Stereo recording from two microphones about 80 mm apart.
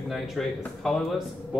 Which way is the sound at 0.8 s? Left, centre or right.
Centre.